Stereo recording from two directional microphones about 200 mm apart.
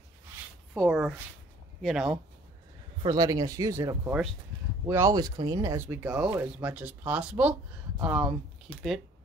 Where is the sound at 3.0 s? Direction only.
20° right (ahead or behind); by 9.0 s centre (ahead or behind).